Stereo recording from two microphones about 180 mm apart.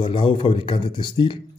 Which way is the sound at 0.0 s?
30° left (ahead or behind).